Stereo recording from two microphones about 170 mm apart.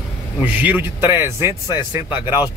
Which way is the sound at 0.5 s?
10° right (ahead or behind).